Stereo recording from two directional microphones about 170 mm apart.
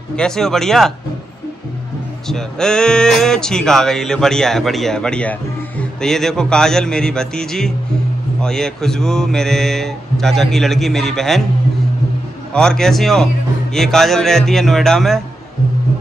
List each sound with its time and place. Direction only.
0.1 s speech: 5° left (ahead or behind)
2.2 s speech: 5° left (ahead or behind)
12.5 s speech: 5° left (ahead or behind)